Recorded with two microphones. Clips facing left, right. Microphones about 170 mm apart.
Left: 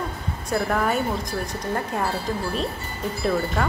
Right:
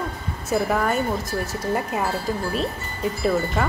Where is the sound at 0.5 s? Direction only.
Centre (ahead or behind).